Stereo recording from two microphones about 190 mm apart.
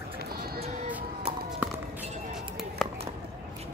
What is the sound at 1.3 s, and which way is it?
Music, 30° right (ahead or behind).